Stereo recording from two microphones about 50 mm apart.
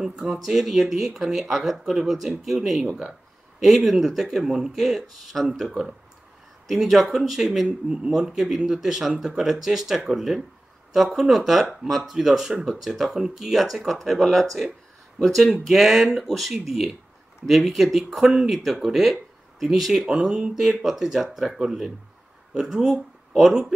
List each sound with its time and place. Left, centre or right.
0.0 s speech: centre
7.6 s speech: centre
15.6 s speech: centre
20.8 s speech: centre